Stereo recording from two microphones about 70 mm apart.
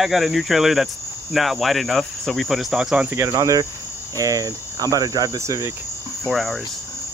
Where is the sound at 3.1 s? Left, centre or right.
Right.